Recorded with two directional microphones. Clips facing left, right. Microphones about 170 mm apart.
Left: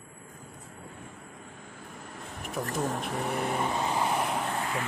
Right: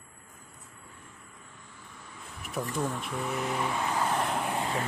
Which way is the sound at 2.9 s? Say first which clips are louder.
Left 2 dB; 40° left (ahead or behind).